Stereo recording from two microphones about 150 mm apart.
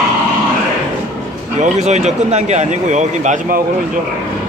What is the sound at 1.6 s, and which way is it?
Speech, 50° right (ahead or behind).